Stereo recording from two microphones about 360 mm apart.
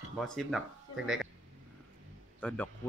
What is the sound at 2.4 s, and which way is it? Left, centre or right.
Speech, centre.